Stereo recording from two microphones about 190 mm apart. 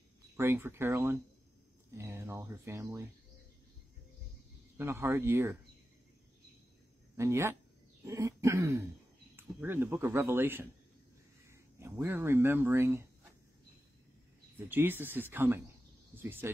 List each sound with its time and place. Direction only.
0.4 s speech: 10° right (ahead or behind)
4.7 s speech: 10° right (ahead or behind)
7.2 s speech: 15° right (ahead or behind)
14.7 s speech: 10° right (ahead or behind)